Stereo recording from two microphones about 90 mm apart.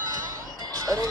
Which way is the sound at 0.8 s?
40° right (ahead or behind).